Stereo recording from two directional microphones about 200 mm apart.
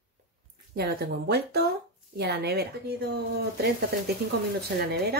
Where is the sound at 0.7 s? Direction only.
50° right (ahead or behind).